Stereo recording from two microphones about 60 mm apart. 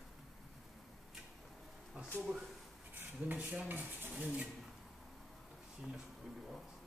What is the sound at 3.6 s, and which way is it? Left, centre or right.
Stir, right.